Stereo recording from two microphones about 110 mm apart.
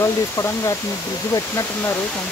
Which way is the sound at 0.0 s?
30° left (ahead or behind).